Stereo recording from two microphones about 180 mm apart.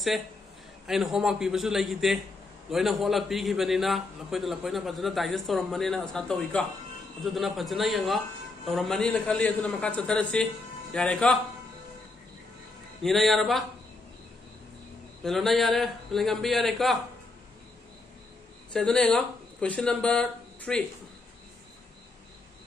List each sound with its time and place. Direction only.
0.8 s a man's voice: centre (ahead or behind)
13.0 s a man's voice: centre (ahead or behind)
15.2 s a man's voice: centre (ahead or behind)
18.7 s speech: 5° left (ahead or behind)